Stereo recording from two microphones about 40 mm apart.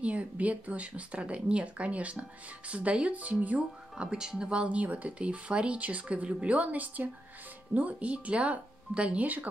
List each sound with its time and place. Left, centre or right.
0.0 s speech: right
4.0 s speech: centre
4.7 s speech: right